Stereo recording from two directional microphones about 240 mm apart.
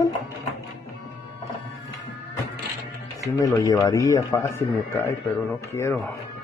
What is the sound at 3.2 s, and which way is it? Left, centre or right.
Speech, centre.